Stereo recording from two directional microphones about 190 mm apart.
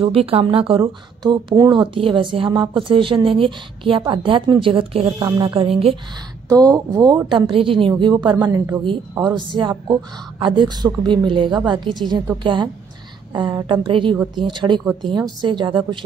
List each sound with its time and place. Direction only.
0.0 s speech: 30° right (ahead or behind)
6.5 s speech: 20° right (ahead or behind)